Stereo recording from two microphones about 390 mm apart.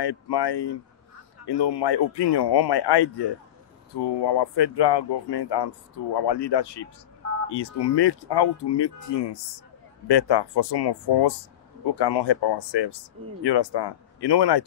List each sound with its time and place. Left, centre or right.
0.0 s speech: left